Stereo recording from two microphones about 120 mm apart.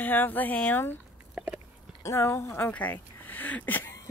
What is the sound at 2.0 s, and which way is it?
Speech, 25° left (ahead or behind).